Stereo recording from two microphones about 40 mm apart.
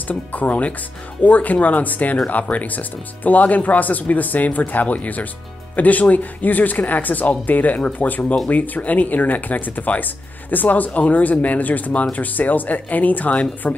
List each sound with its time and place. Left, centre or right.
0.1 s speech: left
13.6 s a woman's voice: left